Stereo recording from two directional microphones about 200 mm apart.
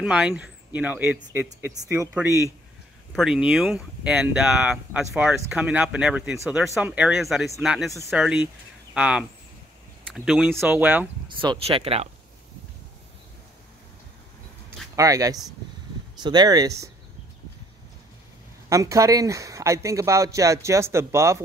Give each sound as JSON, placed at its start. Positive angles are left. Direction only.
{"t": 0.0, "sound": "a man's voice", "side_deg": -5}
{"t": 3.1, "sound": "speech", "side_deg": 0}
{"t": 11.4, "sound": "speech", "side_deg": -25}
{"t": 15.0, "sound": "a man's voice", "side_deg": -15}
{"t": 18.7, "sound": "a man's voice", "side_deg": -15}